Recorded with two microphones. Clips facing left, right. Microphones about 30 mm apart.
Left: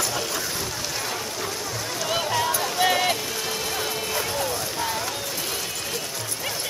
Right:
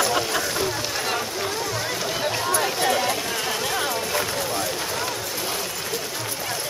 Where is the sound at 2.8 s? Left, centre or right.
Centre.